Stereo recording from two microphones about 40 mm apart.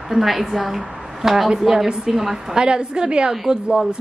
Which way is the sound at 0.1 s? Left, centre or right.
Centre.